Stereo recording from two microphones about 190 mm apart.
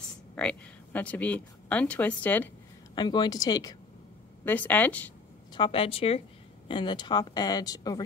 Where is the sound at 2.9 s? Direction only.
25° left (ahead or behind).